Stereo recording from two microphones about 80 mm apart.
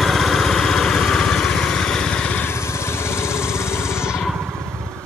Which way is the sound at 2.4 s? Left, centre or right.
Left.